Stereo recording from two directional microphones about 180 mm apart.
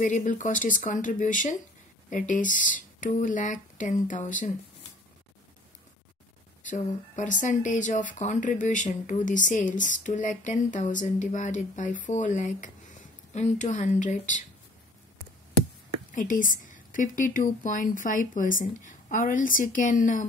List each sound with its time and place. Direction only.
0.0 s speech: 45° left (ahead or behind)
6.6 s speech: 45° left (ahead or behind)
16.1 s speech: 45° left (ahead or behind)